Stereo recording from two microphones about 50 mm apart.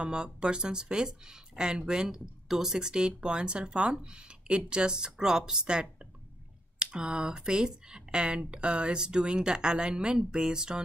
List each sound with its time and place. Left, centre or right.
0.0 s speech: centre